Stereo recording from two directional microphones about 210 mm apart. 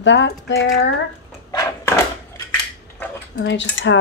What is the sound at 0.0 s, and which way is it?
Speech, 60° left (ahead or behind).